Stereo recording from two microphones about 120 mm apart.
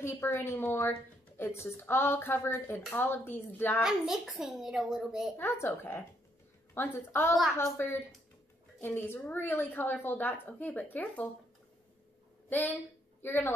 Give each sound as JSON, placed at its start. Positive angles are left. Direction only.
{"t": 0.0, "sound": "a woman's voice", "side_deg": 20}
{"t": 3.8, "sound": "a child's voice", "side_deg": -5}
{"t": 5.4, "sound": "a woman's voice", "side_deg": 20}
{"t": 12.4, "sound": "a woman's voice", "side_deg": 15}